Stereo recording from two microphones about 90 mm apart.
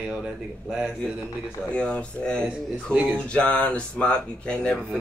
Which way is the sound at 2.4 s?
20° right (ahead or behind).